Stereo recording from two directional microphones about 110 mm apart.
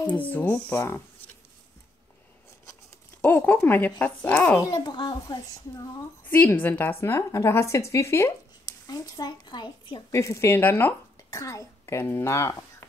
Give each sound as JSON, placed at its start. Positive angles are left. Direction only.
{"t": 0.3, "sound": "speech", "side_deg": 15}
{"t": 3.2, "sound": "speech", "side_deg": 20}
{"t": 4.6, "sound": "speech", "side_deg": 30}
{"t": 4.8, "sound": "a child's voice", "side_deg": 45}
{"t": 6.3, "sound": "speech", "side_deg": 15}
{"t": 8.8, "sound": "speech", "side_deg": 35}
{"t": 10.1, "sound": "speech", "side_deg": 25}
{"t": 11.2, "sound": "a woman's voice", "side_deg": 30}